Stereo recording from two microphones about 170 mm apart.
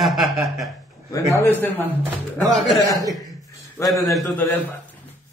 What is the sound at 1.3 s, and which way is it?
Speech, 15° left (ahead or behind).